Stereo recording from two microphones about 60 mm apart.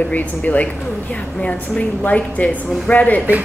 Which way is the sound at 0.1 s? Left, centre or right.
Left.